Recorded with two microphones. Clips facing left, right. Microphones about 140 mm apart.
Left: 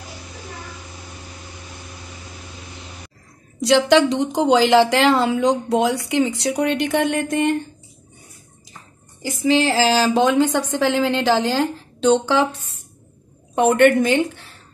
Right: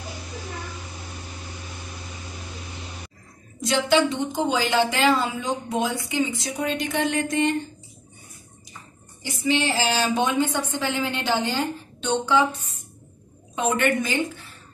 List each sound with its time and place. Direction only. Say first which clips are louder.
3.9 s a woman's voice: left 5 dB; 80° left; by 7.5 s 55° left (ahead or behind)
9.2 s a woman's voice: left 6 dB; 90° left
13.6 s a woman's voice: left 9 dB; 70° left (ahead or behind)